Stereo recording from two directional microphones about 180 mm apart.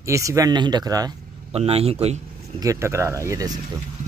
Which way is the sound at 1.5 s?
35° right (ahead or behind).